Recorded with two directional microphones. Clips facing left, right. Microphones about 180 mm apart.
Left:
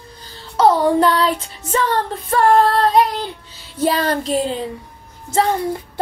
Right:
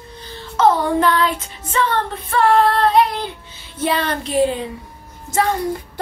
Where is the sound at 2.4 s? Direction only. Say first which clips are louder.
Left 1 dB; 45° left (ahead or behind).